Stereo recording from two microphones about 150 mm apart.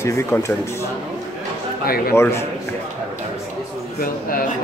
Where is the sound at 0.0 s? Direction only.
20° left (ahead or behind).